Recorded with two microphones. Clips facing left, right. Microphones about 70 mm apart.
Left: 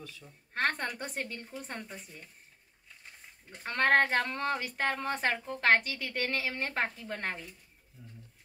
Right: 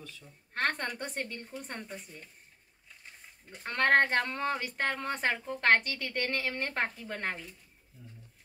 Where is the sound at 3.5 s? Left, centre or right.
Centre.